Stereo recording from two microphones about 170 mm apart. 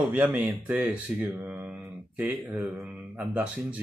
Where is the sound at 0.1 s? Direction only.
10° right (ahead or behind).